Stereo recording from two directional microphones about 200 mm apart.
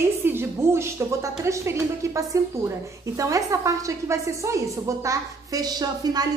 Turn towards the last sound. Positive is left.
turn(degrees=-20)  # may be behind; listen again after turning